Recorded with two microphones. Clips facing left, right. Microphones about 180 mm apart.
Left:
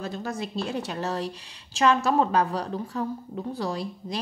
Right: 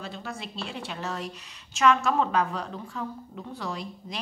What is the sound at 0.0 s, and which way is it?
Speech, 45° left (ahead or behind).